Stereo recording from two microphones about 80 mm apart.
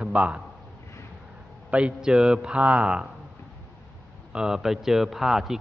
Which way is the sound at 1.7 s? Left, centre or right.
Centre.